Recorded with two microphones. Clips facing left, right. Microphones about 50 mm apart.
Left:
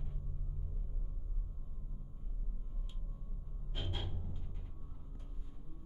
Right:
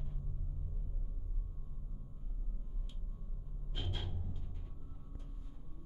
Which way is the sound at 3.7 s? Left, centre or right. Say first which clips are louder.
Left 1 dB; centre.